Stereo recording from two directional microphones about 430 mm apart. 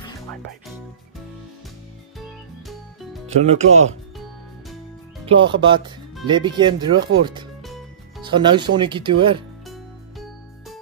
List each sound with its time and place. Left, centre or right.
2.1 s music: centre
3.3 s speech: centre
5.2 s speech: centre